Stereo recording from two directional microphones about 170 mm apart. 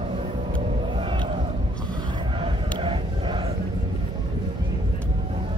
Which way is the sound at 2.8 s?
30° right (ahead or behind).